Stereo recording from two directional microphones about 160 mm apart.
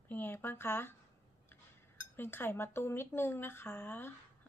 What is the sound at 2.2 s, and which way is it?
Speech, 15° left (ahead or behind).